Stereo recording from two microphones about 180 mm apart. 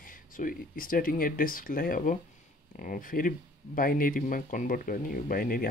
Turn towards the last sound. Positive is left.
turn(degrees=55)  # may be behind; listen again after turning